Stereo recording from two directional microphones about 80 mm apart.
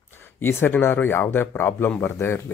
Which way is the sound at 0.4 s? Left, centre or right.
Left.